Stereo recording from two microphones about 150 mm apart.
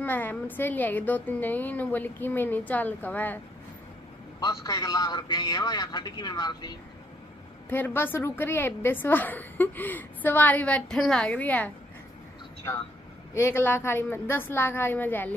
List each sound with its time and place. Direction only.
0.0 s a woman's voice: 10° left (ahead or behind)
4.5 s a man's voice: 25° left (ahead or behind)
7.7 s a woman's voice: 15° left (ahead or behind)